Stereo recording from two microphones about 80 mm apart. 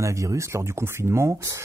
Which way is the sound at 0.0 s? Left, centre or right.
Right.